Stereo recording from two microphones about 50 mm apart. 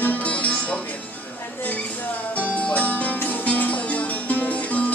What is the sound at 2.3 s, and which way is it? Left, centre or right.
Music, left.